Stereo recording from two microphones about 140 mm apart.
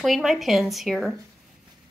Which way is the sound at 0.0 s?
Centre (ahead or behind).